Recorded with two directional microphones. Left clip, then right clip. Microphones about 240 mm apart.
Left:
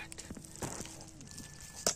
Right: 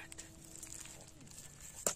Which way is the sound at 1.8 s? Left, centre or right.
Centre.